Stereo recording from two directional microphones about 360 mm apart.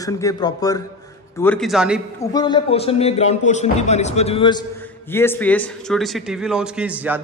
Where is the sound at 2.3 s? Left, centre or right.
Centre.